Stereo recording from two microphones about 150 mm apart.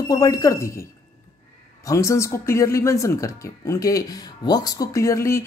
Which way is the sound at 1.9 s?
20° left (ahead or behind).